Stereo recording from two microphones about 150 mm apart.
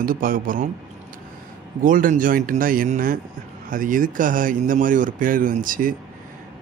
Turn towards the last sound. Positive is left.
turn(degrees=-65)  # may be behind; listen again after turning